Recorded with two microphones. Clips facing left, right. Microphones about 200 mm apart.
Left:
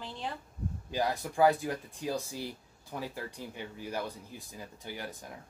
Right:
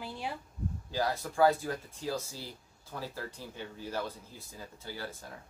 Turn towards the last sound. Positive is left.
turn(degrees=15)  # may be behind; listen again after turning